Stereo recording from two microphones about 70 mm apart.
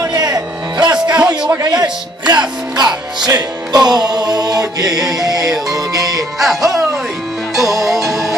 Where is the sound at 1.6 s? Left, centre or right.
Right.